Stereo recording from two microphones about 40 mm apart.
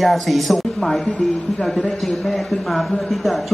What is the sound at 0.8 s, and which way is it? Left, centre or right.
A woman's voice, left.